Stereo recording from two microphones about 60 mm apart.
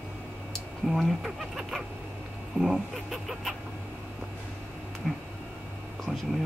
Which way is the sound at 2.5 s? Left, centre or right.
Centre.